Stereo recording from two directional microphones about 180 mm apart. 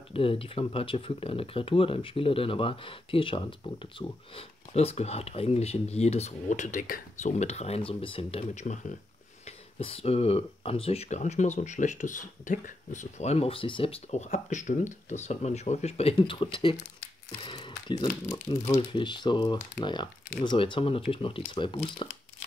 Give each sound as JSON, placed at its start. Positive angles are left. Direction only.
{"t": 0.1, "sound": "speech", "side_deg": 30}
{"t": 18.2, "sound": "speech", "side_deg": 20}